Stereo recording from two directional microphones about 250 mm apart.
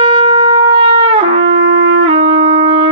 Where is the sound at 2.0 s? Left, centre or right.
Right.